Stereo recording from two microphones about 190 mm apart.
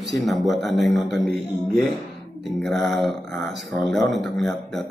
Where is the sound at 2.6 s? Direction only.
Centre (ahead or behind).